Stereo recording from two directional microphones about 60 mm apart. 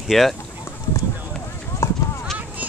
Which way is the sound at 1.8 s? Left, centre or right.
Left.